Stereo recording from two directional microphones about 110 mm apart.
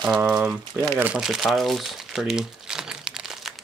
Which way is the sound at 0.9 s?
15° right (ahead or behind).